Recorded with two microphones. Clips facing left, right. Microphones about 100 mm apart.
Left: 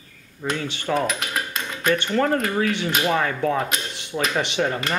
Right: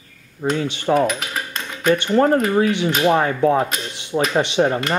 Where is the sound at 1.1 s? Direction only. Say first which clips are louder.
Right 2 dB; centre (ahead or behind).